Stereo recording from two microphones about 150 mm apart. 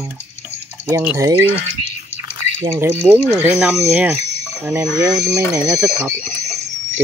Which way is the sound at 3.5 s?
10° right (ahead or behind).